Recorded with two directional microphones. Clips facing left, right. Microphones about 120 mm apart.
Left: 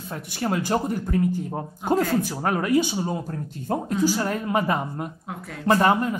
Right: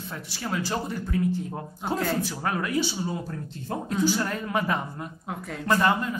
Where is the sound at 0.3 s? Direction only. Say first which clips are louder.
Left 5 dB; 50° left (ahead or behind).